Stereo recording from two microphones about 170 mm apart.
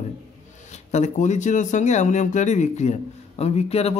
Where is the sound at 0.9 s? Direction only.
45° left (ahead or behind).